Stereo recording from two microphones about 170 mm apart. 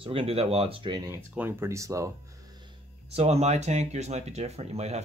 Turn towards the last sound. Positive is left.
turn(degrees=-40)  # may be behind; listen again after turning